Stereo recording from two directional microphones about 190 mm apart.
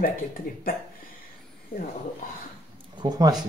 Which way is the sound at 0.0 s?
50° left (ahead or behind).